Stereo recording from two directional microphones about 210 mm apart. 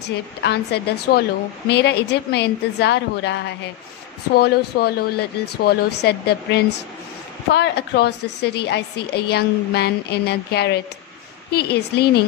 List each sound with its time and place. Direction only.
0.0 s a woman's voice: 55° left (ahead or behind)